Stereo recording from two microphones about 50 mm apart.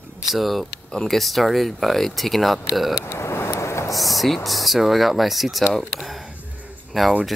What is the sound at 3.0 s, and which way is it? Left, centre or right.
Vehicle, left.